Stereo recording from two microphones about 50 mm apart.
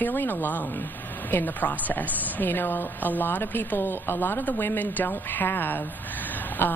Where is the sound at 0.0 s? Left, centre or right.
Left.